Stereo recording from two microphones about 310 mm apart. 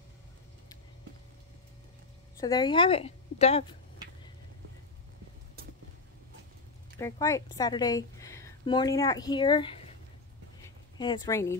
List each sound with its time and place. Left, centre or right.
2.4 s a woman's voice: centre
7.0 s a woman's voice: centre
11.0 s a woman's voice: centre